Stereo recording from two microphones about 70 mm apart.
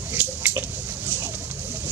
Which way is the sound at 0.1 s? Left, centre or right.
Right.